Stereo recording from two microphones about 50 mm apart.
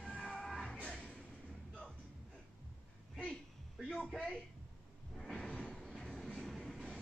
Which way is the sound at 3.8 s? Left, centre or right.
Centre.